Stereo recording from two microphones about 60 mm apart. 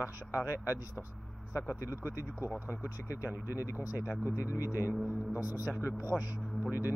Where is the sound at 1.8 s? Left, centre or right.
Left.